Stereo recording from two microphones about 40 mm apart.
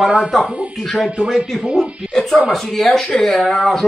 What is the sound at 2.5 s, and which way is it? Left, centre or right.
Speech, centre.